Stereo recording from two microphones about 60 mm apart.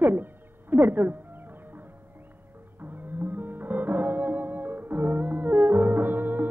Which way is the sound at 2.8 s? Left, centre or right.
Right.